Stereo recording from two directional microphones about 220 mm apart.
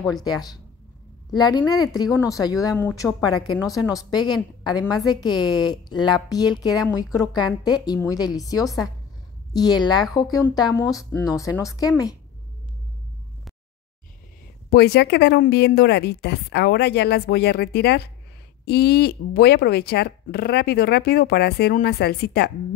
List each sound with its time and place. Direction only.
0.1 s a woman's voice: 15° left (ahead or behind)
14.7 s speech: 45° left (ahead or behind)